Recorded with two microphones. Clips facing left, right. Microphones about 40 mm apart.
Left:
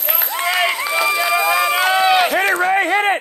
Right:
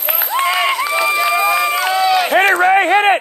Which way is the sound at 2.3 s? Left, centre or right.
Right.